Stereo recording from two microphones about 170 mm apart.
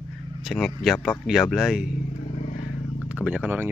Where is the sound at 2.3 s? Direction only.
45° left (ahead or behind).